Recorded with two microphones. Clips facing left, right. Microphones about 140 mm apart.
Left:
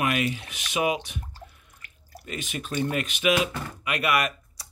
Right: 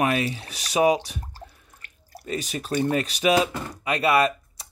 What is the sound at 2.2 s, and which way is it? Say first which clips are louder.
Speech: right 4 dB; 35° right (ahead or behind).